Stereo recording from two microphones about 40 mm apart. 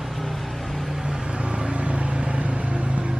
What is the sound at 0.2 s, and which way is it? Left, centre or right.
Vehicle, centre.